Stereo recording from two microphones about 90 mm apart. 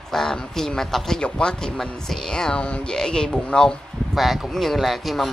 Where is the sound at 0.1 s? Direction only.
5° left (ahead or behind).